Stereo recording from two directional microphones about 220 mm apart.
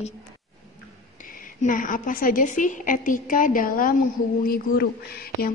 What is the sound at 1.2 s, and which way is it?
A woman's voice, 40° left (ahead or behind).